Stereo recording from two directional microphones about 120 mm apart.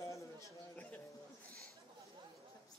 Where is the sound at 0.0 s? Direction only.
25° left (ahead or behind).